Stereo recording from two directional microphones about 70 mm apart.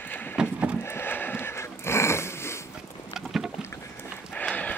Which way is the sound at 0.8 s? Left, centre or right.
Left.